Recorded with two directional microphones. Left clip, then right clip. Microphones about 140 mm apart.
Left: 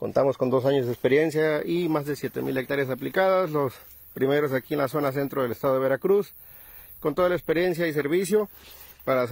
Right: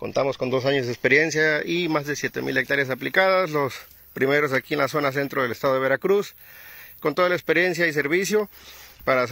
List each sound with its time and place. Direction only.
0.0 s speech: 45° left (ahead or behind)
1.0 s speech: 20° left (ahead or behind); by 9.3 s centre (ahead or behind)